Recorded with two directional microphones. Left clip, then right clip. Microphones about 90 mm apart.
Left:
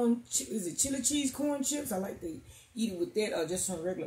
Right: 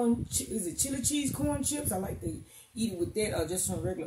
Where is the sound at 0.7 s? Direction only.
10° right (ahead or behind).